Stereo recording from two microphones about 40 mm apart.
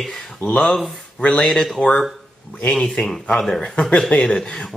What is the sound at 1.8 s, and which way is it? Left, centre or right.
Speech, left.